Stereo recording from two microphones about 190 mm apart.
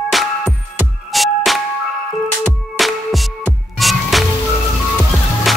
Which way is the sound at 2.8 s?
Centre (ahead or behind).